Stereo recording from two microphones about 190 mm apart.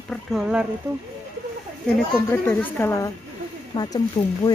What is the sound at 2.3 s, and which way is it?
Speech, 10° left (ahead or behind).